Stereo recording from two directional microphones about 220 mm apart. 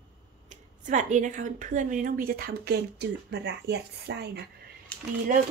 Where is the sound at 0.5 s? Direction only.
35° right (ahead or behind).